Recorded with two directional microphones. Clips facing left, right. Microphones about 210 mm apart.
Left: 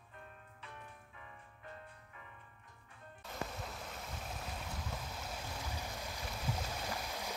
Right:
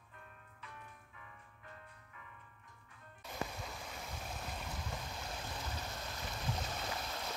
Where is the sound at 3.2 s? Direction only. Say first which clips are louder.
Even; centre (ahead or behind).